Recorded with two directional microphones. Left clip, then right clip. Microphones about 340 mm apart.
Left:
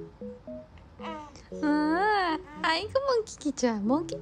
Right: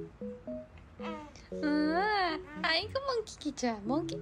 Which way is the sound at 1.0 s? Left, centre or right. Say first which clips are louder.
Left 3 dB; centre.